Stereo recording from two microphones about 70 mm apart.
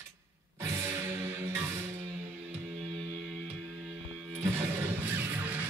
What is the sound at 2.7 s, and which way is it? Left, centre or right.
Music, centre.